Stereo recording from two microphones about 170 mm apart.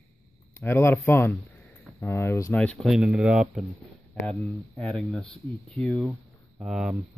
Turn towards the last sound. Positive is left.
turn(degrees=0)  # may be behind; listen again after turning